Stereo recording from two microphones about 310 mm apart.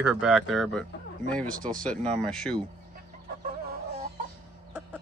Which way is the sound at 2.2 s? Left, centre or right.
Centre.